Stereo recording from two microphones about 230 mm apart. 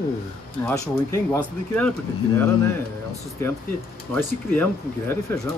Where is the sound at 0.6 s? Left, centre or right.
Centre.